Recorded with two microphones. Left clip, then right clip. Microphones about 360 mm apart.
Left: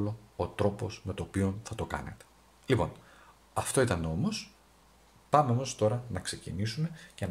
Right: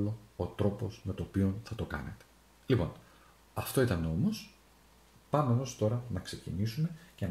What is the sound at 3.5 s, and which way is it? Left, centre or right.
Speech, left.